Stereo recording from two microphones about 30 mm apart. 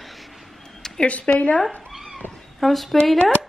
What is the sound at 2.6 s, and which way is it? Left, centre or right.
Speech, centre.